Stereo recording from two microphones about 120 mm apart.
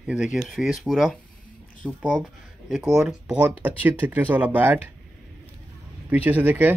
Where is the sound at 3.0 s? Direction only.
10° right (ahead or behind).